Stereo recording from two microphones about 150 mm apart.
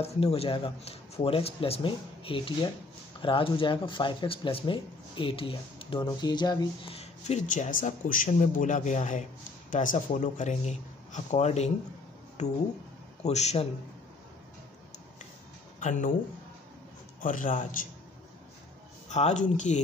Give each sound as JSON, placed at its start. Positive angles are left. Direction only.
{"t": 0.0, "sound": "speech", "side_deg": 40}
{"t": 6.9, "sound": "speech", "side_deg": 45}
{"t": 15.8, "sound": "speech", "side_deg": 60}
{"t": 17.2, "sound": "a man's voice", "side_deg": 65}
{"t": 19.0, "sound": "speech", "side_deg": 50}